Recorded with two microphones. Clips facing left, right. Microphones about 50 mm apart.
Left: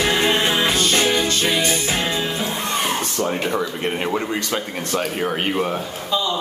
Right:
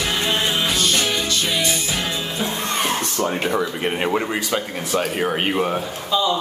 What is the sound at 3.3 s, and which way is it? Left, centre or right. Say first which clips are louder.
Speech: right 1 dB; centre.